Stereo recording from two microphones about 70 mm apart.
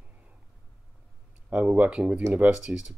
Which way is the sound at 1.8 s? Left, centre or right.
Centre.